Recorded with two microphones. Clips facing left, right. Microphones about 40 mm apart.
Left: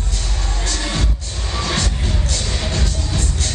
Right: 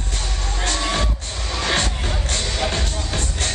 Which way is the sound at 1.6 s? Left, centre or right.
Right.